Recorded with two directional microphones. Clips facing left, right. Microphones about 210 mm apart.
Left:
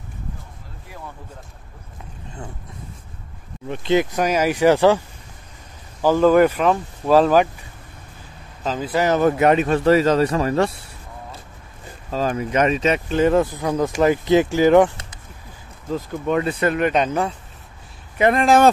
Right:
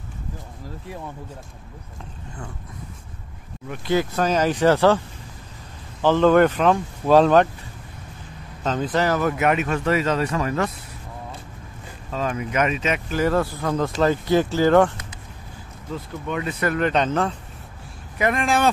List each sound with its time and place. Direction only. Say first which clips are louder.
3.6 s speech: left 3 dB; 25° left (ahead or behind)
6.0 s speech: left 1 dB; 10° left (ahead or behind)
8.6 s speech: even; 5° left (ahead or behind)
9.0 s speech: left 6 dB; 25° left (ahead or behind)
12.1 s speech: left 4 dB; 35° left (ahead or behind)
13.2 s speech: left 4 dB; 20° left (ahead or behind)
15.9 s speech: left 7 dB; 40° left (ahead or behind); by 17.4 s 10° left (ahead or behind)
18.1 s speech: left 6 dB; 30° left (ahead or behind)